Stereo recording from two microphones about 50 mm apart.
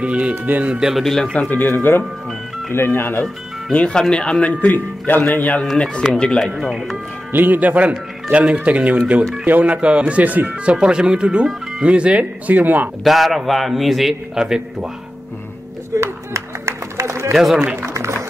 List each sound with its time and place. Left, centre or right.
0.0 s speech: right
1.5 s speech: left
3.7 s speech: left
6.0 s speech: centre
7.3 s speech: right
10.7 s speech: centre; by 12.9 s right
13.0 s a man's voice: centre
16.0 s music: right
17.3 s a man's voice: centre